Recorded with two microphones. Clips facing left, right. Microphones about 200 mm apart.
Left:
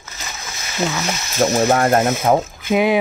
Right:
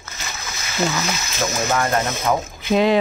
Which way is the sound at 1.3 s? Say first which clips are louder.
Left 7 dB; 40° left (ahead or behind).